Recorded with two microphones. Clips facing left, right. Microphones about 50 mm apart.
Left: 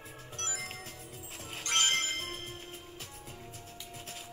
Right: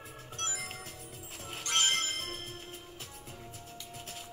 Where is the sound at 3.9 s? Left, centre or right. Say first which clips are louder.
Even; left.